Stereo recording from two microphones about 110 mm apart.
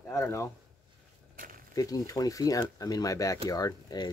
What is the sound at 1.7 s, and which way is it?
Speech, 30° left (ahead or behind).